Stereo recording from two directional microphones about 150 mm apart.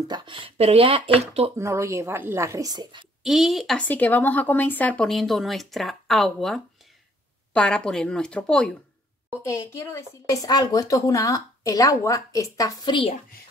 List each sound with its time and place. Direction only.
0.1 s speech: 35° right (ahead or behind)
1.6 s a woman's voice: 20° right (ahead or behind)
3.3 s speech: centre (ahead or behind)
9.5 s speech: 20° left (ahead or behind)